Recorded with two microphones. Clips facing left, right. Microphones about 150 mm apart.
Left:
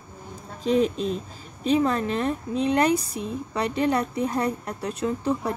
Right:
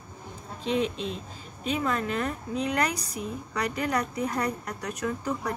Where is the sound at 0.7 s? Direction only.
40° left (ahead or behind).